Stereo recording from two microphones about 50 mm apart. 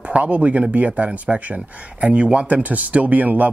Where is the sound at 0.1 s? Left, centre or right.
Right.